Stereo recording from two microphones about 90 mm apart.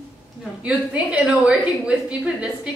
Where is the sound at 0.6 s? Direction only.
15° right (ahead or behind).